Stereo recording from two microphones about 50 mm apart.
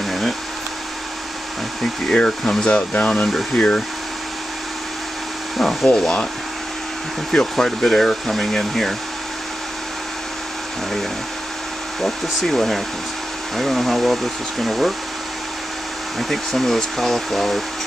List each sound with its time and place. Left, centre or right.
0.0 s a sound: centre
2.1 s speech: centre
5.6 s speech: centre
7.3 s speech: centre
12.0 s speech: centre
16.2 s speech: centre